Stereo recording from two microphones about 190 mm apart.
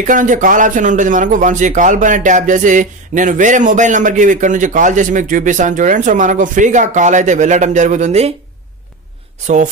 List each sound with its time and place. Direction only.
0.0 s a man's voice: 40° right (ahead or behind)